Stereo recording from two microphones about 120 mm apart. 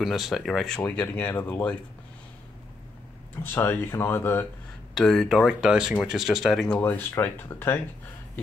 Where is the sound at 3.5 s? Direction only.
20° left (ahead or behind).